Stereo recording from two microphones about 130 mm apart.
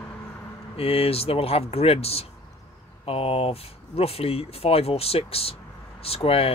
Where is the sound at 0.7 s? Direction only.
50° left (ahead or behind).